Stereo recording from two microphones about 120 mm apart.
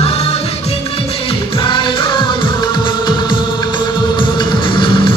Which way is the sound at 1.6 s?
45° left (ahead or behind).